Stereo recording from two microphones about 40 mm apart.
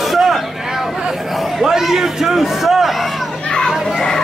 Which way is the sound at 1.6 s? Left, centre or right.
Centre.